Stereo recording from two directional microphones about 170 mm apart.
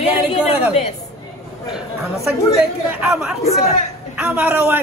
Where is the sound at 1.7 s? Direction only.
20° left (ahead or behind).